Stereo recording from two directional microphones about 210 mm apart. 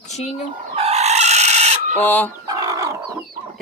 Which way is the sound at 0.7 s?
30° right (ahead or behind).